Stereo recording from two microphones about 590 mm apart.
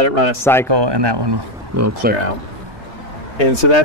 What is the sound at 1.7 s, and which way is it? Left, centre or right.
Speech, right.